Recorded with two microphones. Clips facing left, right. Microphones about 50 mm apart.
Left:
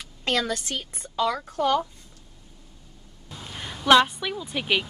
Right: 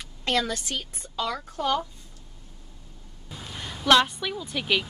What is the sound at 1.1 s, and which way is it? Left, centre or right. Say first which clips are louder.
Speech: left 5 dB; left.